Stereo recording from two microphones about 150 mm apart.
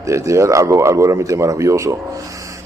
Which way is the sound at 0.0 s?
20° right (ahead or behind).